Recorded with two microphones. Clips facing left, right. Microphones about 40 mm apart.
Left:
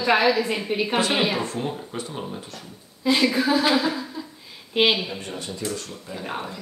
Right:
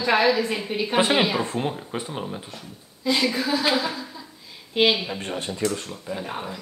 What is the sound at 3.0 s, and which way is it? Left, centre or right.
Speech, centre.